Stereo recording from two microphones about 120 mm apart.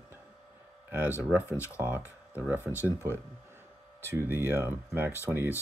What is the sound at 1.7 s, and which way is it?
Speech, 10° right (ahead or behind).